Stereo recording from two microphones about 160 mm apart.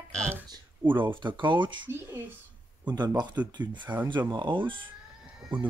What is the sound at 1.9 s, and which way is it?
Speech, 15° right (ahead or behind).